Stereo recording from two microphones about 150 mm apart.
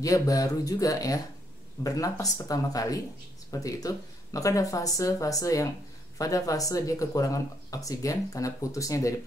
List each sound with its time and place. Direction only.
0.0 s speech: 25° left (ahead or behind)